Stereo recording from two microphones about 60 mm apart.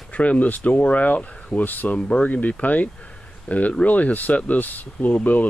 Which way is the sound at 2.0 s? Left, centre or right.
Centre.